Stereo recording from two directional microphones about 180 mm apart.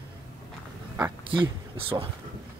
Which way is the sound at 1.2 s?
30° right (ahead or behind).